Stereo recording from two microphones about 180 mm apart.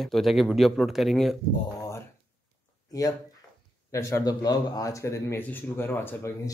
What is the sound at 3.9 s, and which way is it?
Speech, 20° left (ahead or behind).